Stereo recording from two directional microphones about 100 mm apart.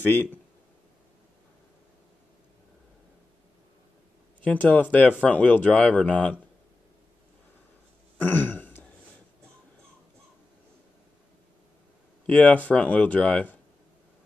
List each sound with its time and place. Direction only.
4.4 s speech: 15° left (ahead or behind)
8.2 s throat clearing: 20° left (ahead or behind)
12.3 s speech: 15° left (ahead or behind)